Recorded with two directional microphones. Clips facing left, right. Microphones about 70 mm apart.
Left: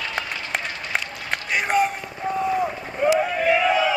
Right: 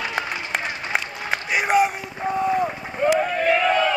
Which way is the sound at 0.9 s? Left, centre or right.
Centre.